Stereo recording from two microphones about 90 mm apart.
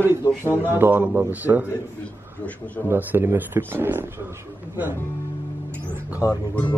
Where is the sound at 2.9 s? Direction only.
20° right (ahead or behind).